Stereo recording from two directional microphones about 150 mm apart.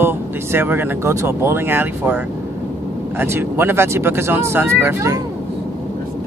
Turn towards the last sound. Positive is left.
turn(degrees=-20)  # may be behind; listen again after turning